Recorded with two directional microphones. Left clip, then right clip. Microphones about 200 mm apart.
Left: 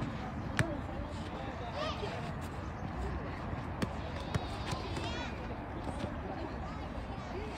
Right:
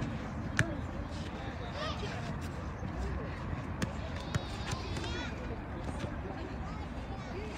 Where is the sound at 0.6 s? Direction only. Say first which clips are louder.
Right 2 dB; 50° left (ahead or behind).